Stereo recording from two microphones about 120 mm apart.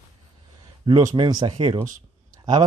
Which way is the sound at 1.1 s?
35° right (ahead or behind).